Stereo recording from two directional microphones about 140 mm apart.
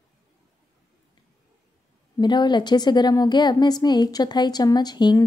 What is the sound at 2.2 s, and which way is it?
A woman's voice, 30° left (ahead or behind).